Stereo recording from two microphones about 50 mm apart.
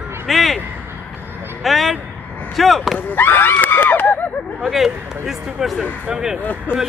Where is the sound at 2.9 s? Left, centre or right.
Left.